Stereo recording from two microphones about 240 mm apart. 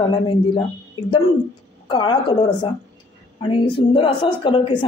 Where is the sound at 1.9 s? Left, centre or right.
Centre.